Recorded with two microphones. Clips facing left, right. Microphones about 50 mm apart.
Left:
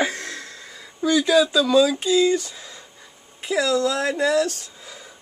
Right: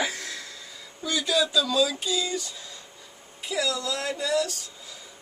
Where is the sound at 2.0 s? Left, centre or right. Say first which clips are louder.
Left 10 dB; left.